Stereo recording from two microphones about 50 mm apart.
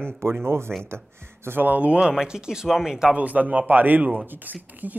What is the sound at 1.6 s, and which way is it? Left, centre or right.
Speech, right.